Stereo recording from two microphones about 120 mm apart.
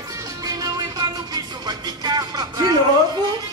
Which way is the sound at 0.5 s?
30° right (ahead or behind).